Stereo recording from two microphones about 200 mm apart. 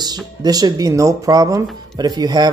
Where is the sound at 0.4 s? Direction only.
20° right (ahead or behind).